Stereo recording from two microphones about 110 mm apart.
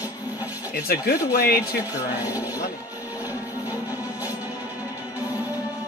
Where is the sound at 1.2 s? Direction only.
30° left (ahead or behind).